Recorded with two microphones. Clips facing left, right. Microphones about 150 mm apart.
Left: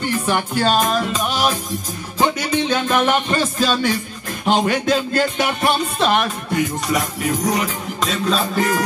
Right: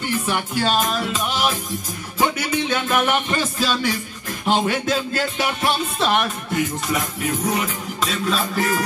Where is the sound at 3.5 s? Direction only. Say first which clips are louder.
Left 4 dB; 45° left (ahead or behind).